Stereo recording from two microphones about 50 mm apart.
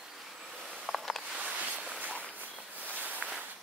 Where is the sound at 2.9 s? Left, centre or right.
Right.